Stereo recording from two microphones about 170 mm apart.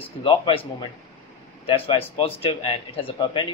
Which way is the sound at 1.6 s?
30° left (ahead or behind).